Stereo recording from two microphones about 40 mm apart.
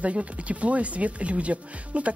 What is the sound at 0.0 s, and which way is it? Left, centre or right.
Speech, right.